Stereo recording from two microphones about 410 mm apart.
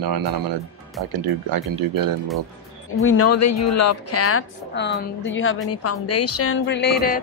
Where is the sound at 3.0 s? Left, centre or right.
Left.